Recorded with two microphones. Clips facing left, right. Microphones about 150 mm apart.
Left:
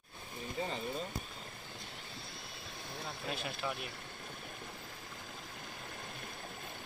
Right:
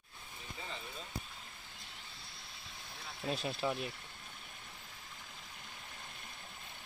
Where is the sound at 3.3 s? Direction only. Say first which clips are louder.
Right 4 dB; 30° right (ahead or behind).